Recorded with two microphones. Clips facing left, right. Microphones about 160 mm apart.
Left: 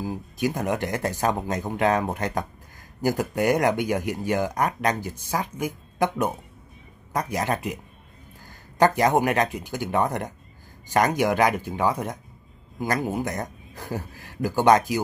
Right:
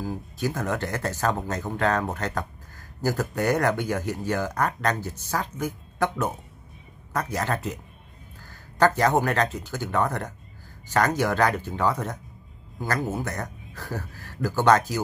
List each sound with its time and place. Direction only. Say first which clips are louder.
0.0 s speech: left 2 dB; 15° left (ahead or behind)